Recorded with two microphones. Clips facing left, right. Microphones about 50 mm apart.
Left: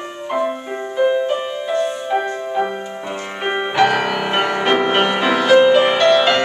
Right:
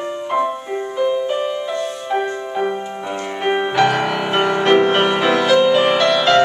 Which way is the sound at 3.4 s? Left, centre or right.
Centre.